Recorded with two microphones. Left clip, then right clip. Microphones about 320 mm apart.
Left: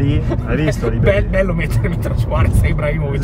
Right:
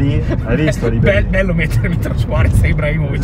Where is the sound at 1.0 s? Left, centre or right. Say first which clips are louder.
Even; centre.